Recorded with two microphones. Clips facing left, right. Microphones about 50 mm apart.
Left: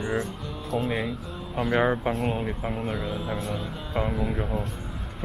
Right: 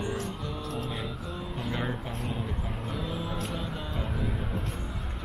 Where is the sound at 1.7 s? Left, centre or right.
Left.